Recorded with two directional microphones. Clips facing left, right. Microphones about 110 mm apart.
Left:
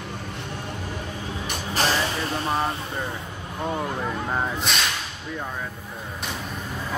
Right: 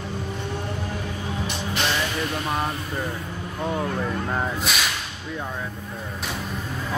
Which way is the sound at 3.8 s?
15° left (ahead or behind).